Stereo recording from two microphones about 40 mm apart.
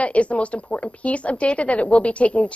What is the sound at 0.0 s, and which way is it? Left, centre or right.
A woman's voice, left.